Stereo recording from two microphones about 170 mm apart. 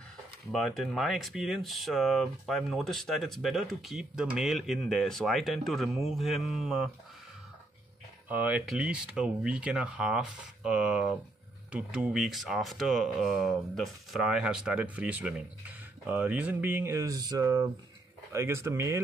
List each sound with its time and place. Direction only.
0.5 s speech: centre (ahead or behind)
8.3 s speech: 10° right (ahead or behind)